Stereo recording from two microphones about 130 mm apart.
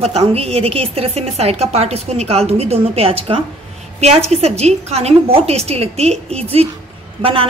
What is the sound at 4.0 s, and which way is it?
A woman's voice, 55° right (ahead or behind).